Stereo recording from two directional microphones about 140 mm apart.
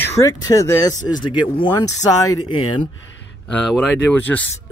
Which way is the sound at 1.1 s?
35° left (ahead or behind).